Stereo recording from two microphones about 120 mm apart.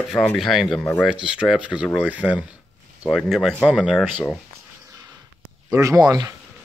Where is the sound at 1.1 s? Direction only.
5° right (ahead or behind).